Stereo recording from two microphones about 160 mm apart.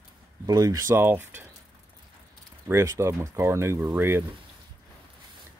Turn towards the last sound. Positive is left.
turn(degrees=-15)  # may be behind; listen again after turning